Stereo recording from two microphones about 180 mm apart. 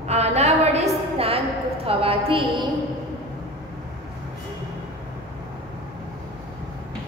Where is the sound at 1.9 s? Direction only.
30° right (ahead or behind).